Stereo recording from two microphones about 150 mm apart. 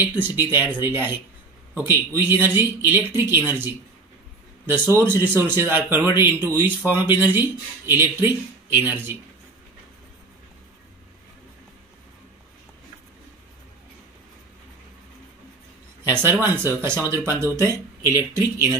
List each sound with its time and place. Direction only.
0.0 s speech: 15° right (ahead or behind)
16.0 s speech: 15° right (ahead or behind)